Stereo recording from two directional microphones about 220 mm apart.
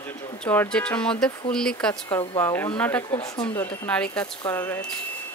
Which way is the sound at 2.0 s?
15° left (ahead or behind).